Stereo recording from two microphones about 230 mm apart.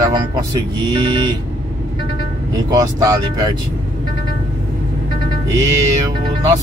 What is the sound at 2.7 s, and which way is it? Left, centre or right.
Speech, centre.